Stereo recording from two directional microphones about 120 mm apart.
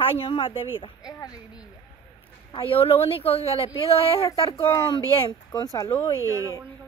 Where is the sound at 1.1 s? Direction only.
30° left (ahead or behind).